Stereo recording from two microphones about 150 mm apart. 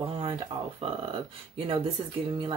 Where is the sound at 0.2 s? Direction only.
35° right (ahead or behind).